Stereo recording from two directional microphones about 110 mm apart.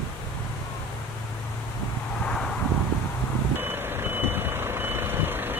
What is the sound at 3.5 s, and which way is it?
Reversing beeps, 20° right (ahead or behind).